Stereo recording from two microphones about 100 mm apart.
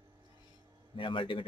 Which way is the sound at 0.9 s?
60° left (ahead or behind).